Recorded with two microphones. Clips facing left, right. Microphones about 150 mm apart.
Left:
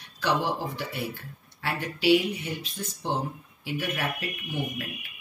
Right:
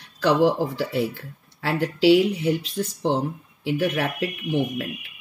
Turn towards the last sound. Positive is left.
turn(degrees=-80)